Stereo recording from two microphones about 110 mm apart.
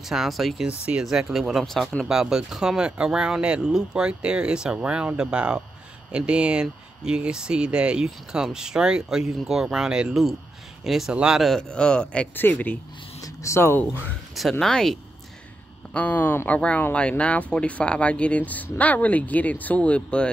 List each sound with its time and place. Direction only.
0.0 s speech: 5° right (ahead or behind); by 12.7 s 15° left (ahead or behind)
13.2 s speech: 25° left (ahead or behind)
14.5 s speech: 5° left (ahead or behind)
15.9 s speech: 15° left (ahead or behind)